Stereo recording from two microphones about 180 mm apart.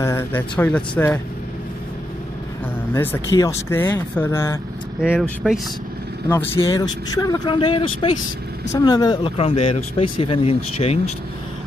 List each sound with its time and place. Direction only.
0.0 s speech: 15° left (ahead or behind)
2.9 s speech: 15° left (ahead or behind)
5.2 s speech: centre (ahead or behind)
6.2 s speech: 10° left (ahead or behind)
6.5 s speech: 20° left (ahead or behind)